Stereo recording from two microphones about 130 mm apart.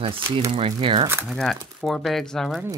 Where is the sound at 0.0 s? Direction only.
45° right (ahead or behind).